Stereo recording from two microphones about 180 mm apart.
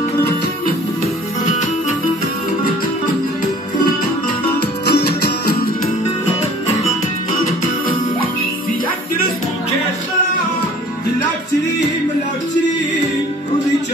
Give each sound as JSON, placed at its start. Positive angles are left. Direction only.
{"t": 4.6, "sound": "music", "side_deg": 65}